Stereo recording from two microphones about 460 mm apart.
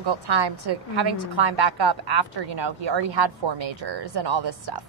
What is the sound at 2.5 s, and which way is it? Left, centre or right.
A woman's voice, right.